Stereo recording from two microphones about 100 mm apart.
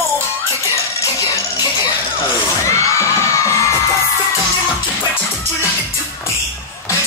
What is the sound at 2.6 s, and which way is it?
Crowd, 30° left (ahead or behind).